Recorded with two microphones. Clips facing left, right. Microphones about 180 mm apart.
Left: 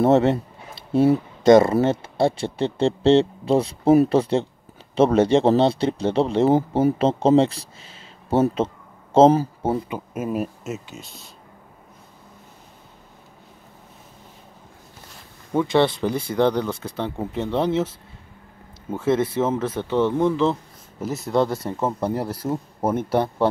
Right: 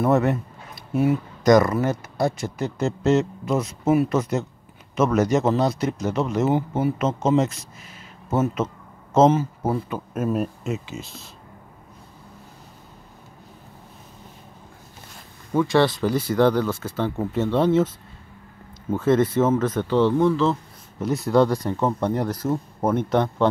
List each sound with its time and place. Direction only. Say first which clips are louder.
0.0 s speech: left 3 dB; 25° left (ahead or behind)
9.8 s speech: right 2 dB; 10° left (ahead or behind)
15.5 s speech: even; 25° left (ahead or behind)
18.9 s speech: right 2 dB; 10° left (ahead or behind)
21.0 s speech: right 3 dB; centre (ahead or behind)